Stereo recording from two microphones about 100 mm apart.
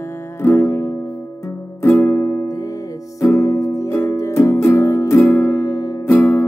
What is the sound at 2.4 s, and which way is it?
Music, 35° left (ahead or behind).